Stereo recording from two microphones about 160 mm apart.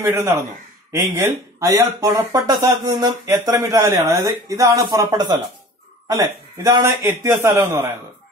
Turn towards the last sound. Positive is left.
turn(degrees=-15)  # may be behind; listen again after turning